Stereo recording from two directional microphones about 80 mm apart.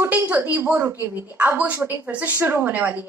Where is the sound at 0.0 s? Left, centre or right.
Right.